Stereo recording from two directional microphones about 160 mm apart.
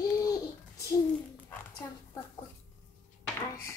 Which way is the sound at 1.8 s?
15° left (ahead or behind).